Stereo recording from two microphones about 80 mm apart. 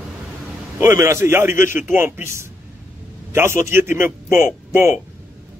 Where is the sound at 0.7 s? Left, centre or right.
Right.